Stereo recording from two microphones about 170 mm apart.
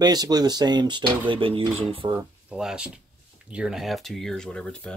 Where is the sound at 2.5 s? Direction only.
5° right (ahead or behind).